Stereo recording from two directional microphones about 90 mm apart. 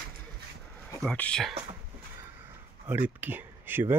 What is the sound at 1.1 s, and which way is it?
Speech, 15° left (ahead or behind).